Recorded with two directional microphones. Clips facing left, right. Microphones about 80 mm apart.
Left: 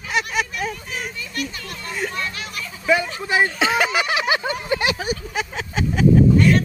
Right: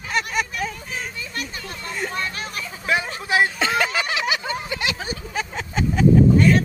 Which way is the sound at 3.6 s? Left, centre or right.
Centre.